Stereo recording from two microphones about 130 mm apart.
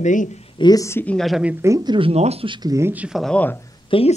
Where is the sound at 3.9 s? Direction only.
40° left (ahead or behind).